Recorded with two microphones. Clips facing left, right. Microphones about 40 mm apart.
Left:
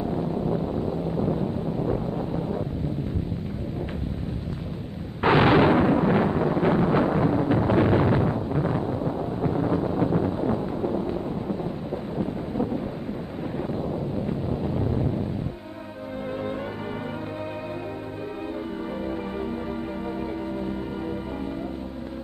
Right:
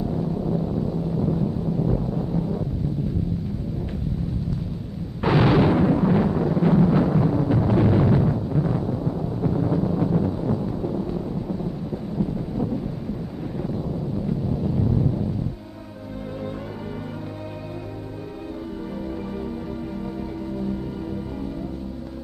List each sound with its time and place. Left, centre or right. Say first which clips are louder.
0.0 s wind noise: right 1 dB; left
5.2 s a sound: left 1 dB; left
14.2 s wind noise: right 2 dB; left